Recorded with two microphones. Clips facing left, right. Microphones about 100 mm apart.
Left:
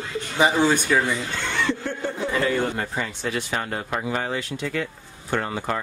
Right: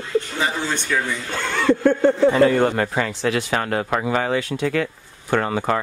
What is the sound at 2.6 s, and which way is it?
Speech, 75° right (ahead or behind).